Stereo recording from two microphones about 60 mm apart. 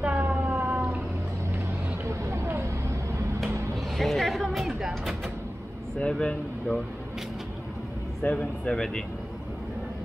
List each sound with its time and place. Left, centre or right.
0.0 s cat: right
2.0 s a sound: right
3.7 s vehicle: centre
5.9 s speech: centre
8.2 s speech: centre